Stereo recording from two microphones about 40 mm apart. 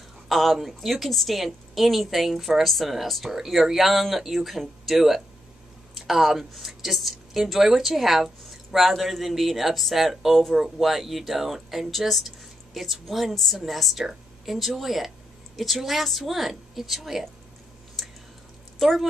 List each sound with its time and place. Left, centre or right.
0.3 s speech: centre
18.0 s a sound: centre
18.8 s speech: centre